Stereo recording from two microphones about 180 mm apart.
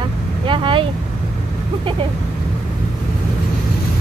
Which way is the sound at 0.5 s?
30° right (ahead or behind).